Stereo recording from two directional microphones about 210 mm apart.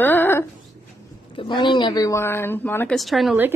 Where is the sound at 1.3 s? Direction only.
25° left (ahead or behind).